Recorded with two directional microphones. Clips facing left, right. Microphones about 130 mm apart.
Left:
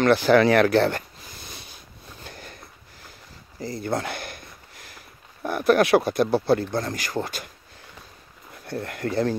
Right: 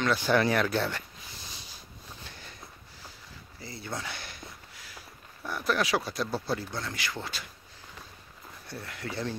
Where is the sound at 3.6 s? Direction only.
50° left (ahead or behind).